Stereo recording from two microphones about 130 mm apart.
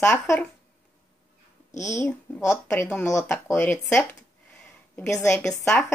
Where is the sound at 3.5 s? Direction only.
15° left (ahead or behind).